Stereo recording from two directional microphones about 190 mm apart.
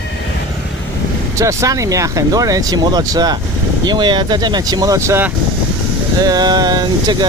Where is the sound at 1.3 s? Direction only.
15° right (ahead or behind).